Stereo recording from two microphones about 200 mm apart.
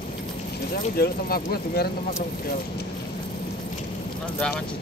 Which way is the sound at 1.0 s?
50° left (ahead or behind).